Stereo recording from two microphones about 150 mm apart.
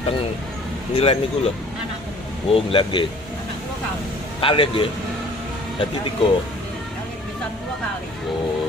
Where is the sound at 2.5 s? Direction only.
35° left (ahead or behind).